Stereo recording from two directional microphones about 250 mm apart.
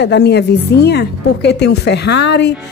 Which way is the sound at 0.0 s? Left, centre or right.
Left.